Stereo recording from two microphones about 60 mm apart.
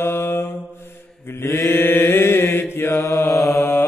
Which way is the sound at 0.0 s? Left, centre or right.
Left.